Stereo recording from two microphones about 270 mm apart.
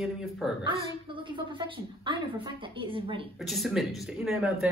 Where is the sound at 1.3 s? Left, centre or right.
Centre.